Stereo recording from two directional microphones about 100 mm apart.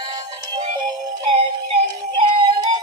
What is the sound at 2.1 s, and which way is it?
Music, 50° right (ahead or behind).